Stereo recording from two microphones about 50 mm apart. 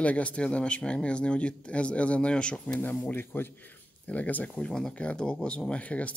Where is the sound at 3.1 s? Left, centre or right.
Left.